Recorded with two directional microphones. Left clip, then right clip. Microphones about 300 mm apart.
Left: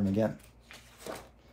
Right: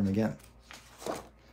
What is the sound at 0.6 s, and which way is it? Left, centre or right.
Walk, centre.